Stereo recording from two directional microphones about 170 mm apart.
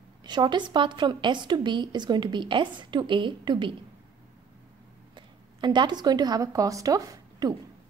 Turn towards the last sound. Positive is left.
turn(degrees=-20)  # may be behind; listen again after turning